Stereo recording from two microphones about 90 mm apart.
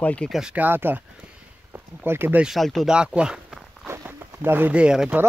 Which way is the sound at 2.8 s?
10° right (ahead or behind).